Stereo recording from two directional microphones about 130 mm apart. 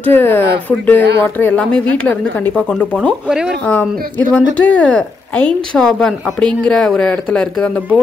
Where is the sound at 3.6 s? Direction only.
10° left (ahead or behind).